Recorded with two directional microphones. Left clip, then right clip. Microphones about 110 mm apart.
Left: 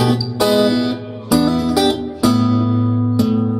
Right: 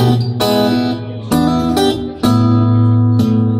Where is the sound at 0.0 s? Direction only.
30° left (ahead or behind).